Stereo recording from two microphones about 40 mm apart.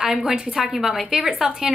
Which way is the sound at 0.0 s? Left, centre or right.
Centre.